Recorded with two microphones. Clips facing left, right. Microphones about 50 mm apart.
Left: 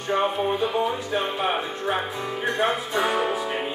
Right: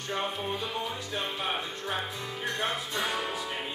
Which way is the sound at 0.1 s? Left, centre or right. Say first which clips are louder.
Left 10 dB; left.